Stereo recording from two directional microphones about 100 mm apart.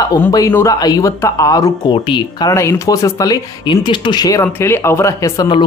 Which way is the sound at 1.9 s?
50° left (ahead or behind).